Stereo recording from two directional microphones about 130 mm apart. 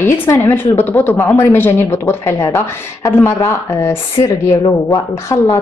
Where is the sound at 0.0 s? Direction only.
15° left (ahead or behind).